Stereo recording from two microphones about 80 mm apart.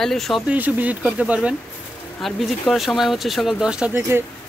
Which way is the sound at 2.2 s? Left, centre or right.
Centre.